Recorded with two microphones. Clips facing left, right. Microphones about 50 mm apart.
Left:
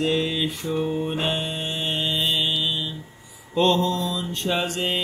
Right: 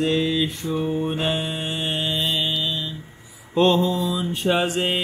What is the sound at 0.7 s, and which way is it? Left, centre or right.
Mantra, centre.